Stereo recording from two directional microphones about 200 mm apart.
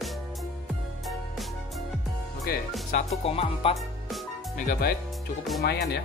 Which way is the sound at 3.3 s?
30° left (ahead or behind).